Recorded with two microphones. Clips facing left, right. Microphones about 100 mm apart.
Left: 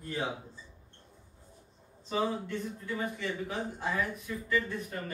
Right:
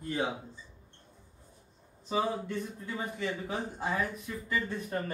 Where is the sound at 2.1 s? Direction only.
20° right (ahead or behind).